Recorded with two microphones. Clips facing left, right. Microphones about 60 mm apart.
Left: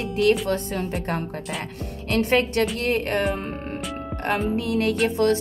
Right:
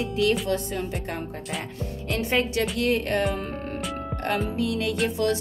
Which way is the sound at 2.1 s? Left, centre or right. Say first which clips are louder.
Left 4 dB; left.